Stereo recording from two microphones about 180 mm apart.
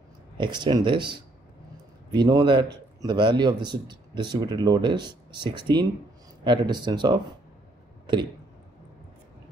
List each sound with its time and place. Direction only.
0.4 s speech: 25° right (ahead or behind)